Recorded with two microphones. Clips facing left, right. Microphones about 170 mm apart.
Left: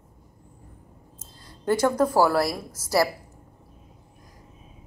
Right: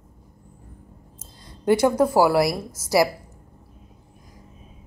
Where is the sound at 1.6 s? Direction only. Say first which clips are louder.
Right 3 dB; 10° right (ahead or behind).